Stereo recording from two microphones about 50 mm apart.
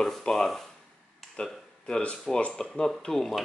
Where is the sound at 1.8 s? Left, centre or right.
Centre.